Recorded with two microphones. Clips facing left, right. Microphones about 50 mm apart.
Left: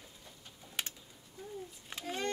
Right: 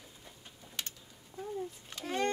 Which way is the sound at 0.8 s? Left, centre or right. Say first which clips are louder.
Left 2 dB; centre.